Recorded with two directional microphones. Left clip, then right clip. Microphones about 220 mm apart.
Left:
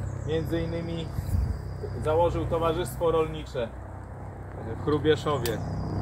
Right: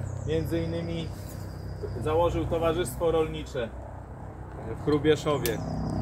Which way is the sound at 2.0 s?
15° right (ahead or behind).